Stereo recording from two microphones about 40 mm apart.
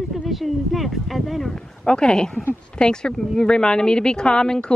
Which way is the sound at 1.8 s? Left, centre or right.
Left.